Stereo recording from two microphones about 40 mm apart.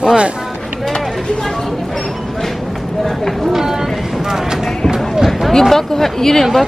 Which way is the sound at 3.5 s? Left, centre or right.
Centre.